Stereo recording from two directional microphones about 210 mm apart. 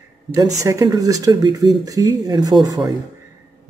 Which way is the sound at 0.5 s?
15° right (ahead or behind).